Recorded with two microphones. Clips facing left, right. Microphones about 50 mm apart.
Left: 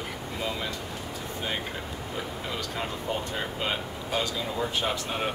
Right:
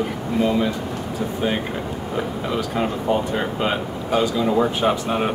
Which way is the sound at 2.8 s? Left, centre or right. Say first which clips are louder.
Right 11 dB; right.